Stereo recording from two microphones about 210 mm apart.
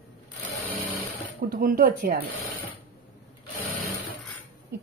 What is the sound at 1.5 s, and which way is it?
Speech, 45° right (ahead or behind).